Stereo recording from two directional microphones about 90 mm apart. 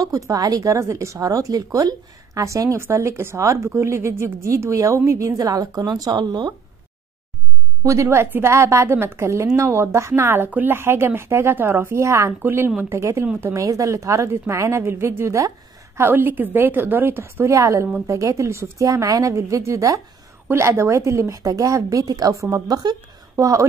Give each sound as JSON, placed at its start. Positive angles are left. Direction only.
{"t": 0.0, "sound": "a woman's voice", "side_deg": -40}
{"t": 7.8, "sound": "a woman's voice", "side_deg": -35}
{"t": 12.4, "sound": "a woman's voice", "side_deg": -25}
{"t": 16.0, "sound": "a woman's voice", "side_deg": -25}
{"t": 23.3, "sound": "a woman's voice", "side_deg": -35}